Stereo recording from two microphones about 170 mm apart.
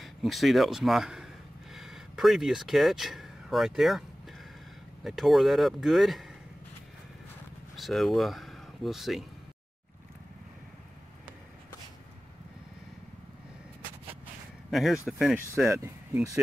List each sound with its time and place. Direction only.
0.0 s a sound: centre (ahead or behind)
5.0 s speech: centre (ahead or behind)
7.7 s speech: centre (ahead or behind)
14.7 s speech: centre (ahead or behind)
15.7 s speech: 15° right (ahead or behind)